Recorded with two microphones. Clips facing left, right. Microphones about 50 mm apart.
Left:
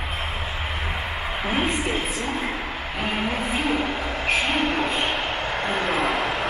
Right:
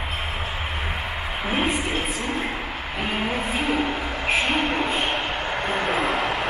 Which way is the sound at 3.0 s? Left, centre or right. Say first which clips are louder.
Even; centre.